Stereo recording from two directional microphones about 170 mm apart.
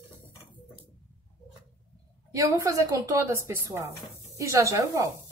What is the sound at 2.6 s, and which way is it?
Speech, 20° right (ahead or behind).